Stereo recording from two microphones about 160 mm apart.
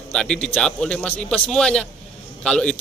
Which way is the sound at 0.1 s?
5° left (ahead or behind).